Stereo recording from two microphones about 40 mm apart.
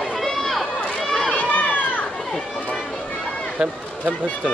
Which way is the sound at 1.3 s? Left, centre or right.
Left.